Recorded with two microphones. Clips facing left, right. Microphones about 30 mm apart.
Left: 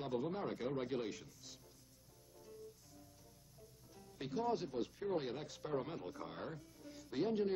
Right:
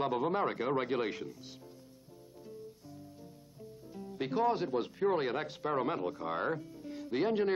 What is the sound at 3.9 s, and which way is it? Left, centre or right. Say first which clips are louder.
Speech: right 9 dB; right.